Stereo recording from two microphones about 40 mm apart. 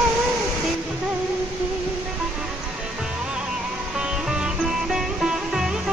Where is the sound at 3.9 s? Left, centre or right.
Centre.